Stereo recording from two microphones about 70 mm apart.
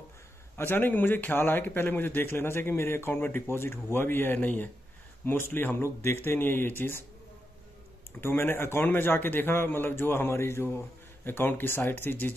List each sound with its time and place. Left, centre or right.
0.6 s a man's voice: left
8.2 s a man's voice: left